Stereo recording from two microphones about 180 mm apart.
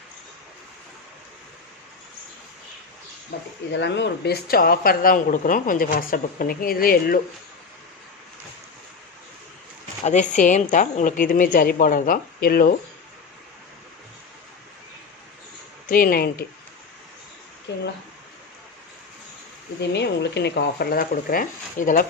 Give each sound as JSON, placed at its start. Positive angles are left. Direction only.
{"t": 3.3, "sound": "speech", "side_deg": 60}
{"t": 3.7, "sound": "speech", "side_deg": 75}
{"t": 10.0, "sound": "speech", "side_deg": 40}
{"t": 15.9, "sound": "speech", "side_deg": 55}
{"t": 17.7, "sound": "speech", "side_deg": 80}
{"t": 19.8, "sound": "speech", "side_deg": 70}